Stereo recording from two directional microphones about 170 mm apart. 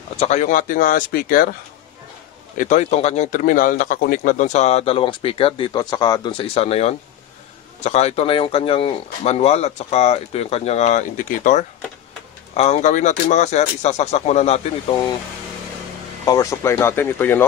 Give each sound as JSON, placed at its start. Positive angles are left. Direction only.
{"t": 0.2, "sound": "speech", "side_deg": 45}
{"t": 2.5, "sound": "a man's voice", "side_deg": 50}
{"t": 16.3, "sound": "speech", "side_deg": 20}